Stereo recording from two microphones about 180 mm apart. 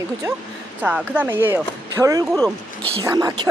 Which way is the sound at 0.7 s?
10° right (ahead or behind).